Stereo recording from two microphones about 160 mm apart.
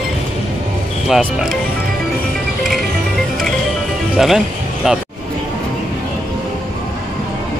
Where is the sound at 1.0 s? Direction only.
5° right (ahead or behind).